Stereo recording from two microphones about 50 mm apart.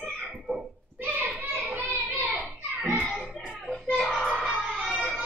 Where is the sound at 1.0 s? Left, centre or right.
Right.